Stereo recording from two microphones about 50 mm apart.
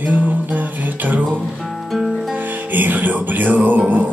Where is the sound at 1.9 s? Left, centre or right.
Centre.